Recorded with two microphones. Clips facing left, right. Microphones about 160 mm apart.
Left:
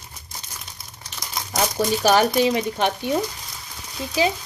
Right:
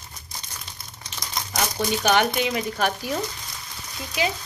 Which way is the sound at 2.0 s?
35° left (ahead or behind).